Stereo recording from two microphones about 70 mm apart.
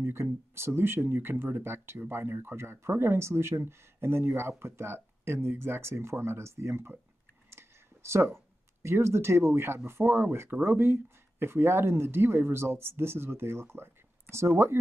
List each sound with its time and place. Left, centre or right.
0.0 s speech: right
7.5 s clicking: right
8.8 s speech: right